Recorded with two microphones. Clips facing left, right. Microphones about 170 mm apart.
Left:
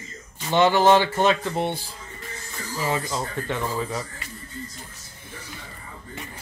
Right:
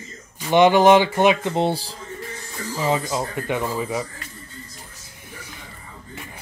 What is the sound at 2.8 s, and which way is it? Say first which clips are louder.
Speech: right 4 dB; 15° right (ahead or behind).